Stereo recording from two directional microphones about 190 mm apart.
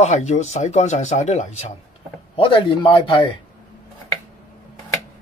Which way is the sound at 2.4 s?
25° left (ahead or behind).